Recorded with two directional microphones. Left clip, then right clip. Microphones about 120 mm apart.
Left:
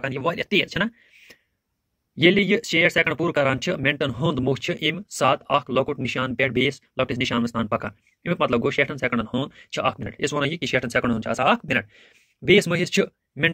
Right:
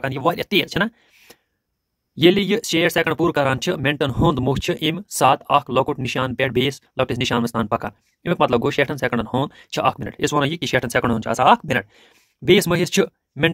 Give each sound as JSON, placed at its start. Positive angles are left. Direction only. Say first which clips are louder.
{"t": 0.0, "sound": "speech", "louder": "right 4 dB", "side_deg": -40}